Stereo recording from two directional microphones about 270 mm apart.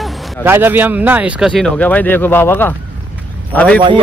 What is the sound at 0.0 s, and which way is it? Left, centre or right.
Speech, centre.